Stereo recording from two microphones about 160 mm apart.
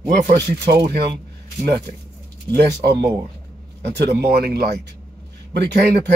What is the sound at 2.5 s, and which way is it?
Speech, 90° right.